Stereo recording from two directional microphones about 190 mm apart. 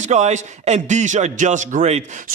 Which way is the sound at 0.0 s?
40° right (ahead or behind).